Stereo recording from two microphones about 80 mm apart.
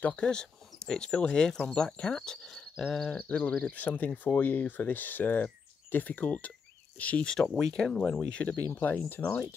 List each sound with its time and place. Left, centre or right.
0.2 s speech: centre
7.3 s speech: centre
9.2 s speech: left